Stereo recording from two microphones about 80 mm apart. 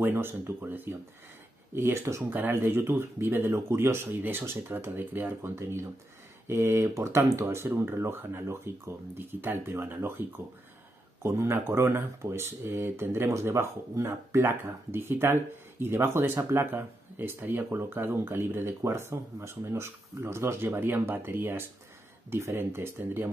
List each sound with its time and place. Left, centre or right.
0.0 s speech: right